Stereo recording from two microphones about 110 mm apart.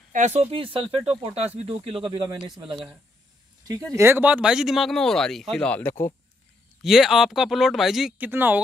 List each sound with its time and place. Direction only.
0.2 s speech: 80° right; by 2.5 s 45° right (ahead or behind)
3.9 s speech: 20° right (ahead or behind); by 6.1 s 20° left (ahead or behind)
6.8 s speech: centre (ahead or behind)
8.2 s speech: 15° right (ahead or behind)